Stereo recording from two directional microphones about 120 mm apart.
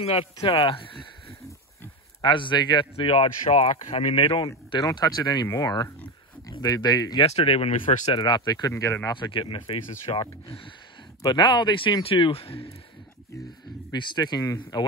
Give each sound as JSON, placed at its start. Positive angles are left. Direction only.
{"t": 0.0, "sound": "speech", "side_deg": 55}
{"t": 2.2, "sound": "speech", "side_deg": 40}
{"t": 4.6, "sound": "speech", "side_deg": 35}
{"t": 7.2, "sound": "speech", "side_deg": 55}
{"t": 9.1, "sound": "speech", "side_deg": 45}
{"t": 13.9, "sound": "speech", "side_deg": 35}